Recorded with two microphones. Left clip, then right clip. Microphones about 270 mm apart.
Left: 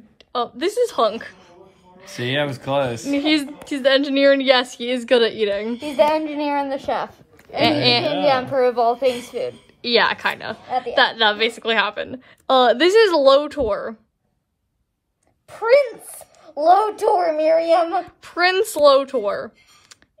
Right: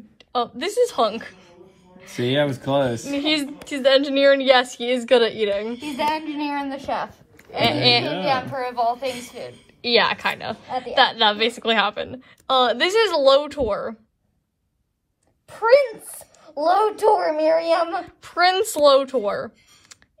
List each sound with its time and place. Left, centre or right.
0.2 s a sound: centre
2.3 s a woman's voice: centre
5.8 s a woman's voice: left
8.2 s a woman's voice: left
9.8 s a woman's voice: centre
15.4 s a sound: centre
17.0 s a woman's voice: centre
17.6 s a woman's voice: left
17.8 s a woman's voice: centre